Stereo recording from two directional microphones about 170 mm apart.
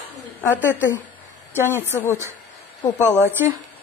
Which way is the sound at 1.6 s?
15° left (ahead or behind).